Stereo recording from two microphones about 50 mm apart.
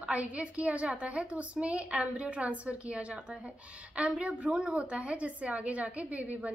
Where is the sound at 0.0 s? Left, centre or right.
Right.